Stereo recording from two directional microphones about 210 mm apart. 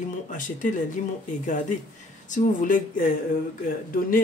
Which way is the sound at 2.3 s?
40° left (ahead or behind).